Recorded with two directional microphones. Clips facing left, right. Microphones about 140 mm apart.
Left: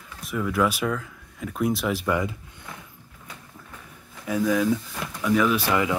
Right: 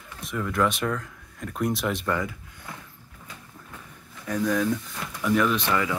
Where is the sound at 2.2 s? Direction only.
20° left (ahead or behind).